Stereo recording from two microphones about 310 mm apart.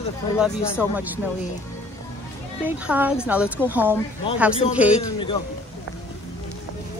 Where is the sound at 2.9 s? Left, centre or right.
Centre.